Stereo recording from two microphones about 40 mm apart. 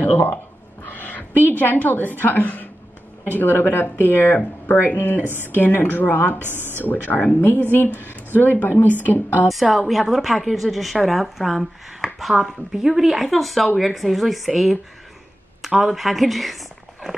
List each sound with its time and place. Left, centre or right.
0.1 s speech: left
0.8 s a sound: left
1.5 s a woman's voice: left
3.3 s a woman's voice: left
6.4 s speech: right
6.8 s a woman's voice: left
9.5 s speech: centre
15.6 s speech: centre